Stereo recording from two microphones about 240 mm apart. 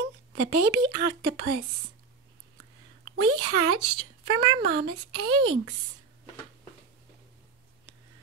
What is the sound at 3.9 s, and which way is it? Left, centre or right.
Speech, centre.